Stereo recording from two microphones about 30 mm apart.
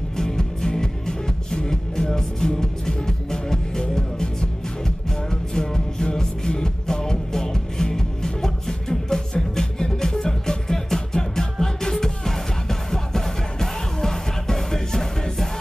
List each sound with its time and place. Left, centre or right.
0.2 s music: left